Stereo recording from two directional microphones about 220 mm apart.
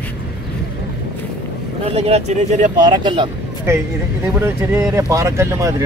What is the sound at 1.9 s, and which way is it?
Speech, 30° right (ahead or behind).